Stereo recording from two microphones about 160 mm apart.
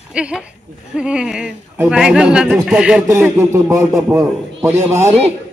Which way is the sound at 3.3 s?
15° right (ahead or behind).